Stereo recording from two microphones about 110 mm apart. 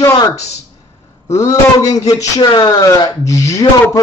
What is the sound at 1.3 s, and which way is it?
Speech, 30° left (ahead or behind).